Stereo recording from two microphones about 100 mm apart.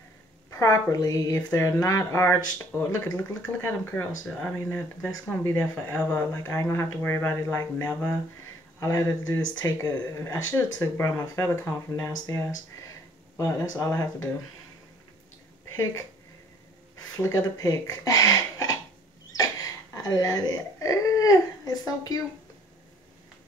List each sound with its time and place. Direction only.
0.5 s speech: 35° left (ahead or behind)
2.7 s speech: 10° right (ahead or behind)
3.6 s speech: 20° left (ahead or behind)
15.7 s speech: 30° left (ahead or behind)
17.2 s speech: 30° left (ahead or behind)